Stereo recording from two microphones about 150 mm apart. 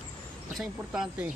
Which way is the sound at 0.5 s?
5° right (ahead or behind).